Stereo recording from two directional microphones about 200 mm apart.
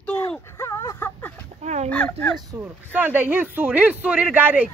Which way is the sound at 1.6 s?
35° right (ahead or behind).